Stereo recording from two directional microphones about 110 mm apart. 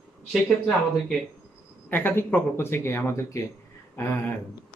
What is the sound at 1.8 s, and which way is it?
Speech, 20° left (ahead or behind).